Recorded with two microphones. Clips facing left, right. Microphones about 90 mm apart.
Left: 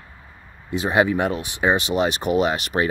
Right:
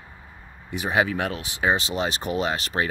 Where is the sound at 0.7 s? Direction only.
25° left (ahead or behind).